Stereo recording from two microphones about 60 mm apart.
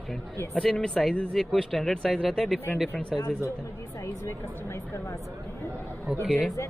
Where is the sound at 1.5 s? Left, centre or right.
Centre.